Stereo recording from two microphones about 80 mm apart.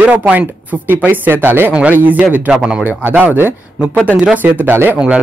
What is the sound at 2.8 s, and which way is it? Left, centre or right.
Speech, right.